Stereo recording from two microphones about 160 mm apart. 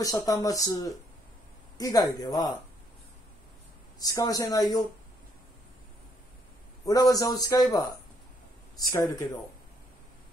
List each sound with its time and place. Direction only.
0.0 s speech: 20° left (ahead or behind)
4.0 s speech: 20° left (ahead or behind)
6.9 s speech: 20° left (ahead or behind)